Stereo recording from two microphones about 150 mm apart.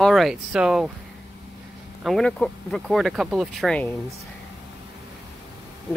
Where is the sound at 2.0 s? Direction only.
5° left (ahead or behind).